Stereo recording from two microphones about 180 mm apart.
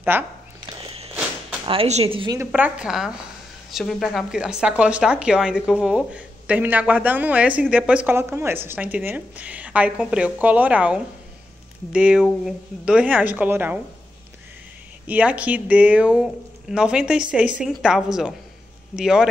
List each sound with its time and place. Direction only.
0.1 s speech: 10° right (ahead or behind)
1.7 s speech: 35° right (ahead or behind)
2.3 s a woman's voice: 10° right (ahead or behind)
15.0 s a woman's voice: 10° right (ahead or behind)